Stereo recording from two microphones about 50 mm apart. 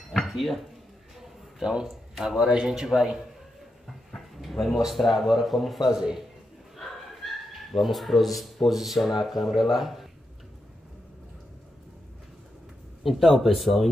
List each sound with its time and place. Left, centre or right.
0.1 s dishes: centre
1.2 s a sound: centre
1.9 s speech: centre
4.1 s a sound: centre
4.8 s speech: centre
5.9 s speech: centre
7.8 s speech: centre
13.0 s speech: centre